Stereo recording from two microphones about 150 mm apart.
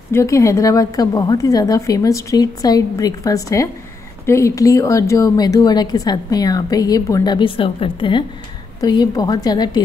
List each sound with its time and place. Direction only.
0.1 s a woman's voice: 20° left (ahead or behind)
7.3 s a woman's voice: 35° left (ahead or behind)